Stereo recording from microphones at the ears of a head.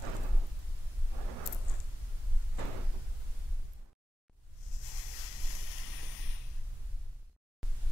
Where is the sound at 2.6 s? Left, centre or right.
Right.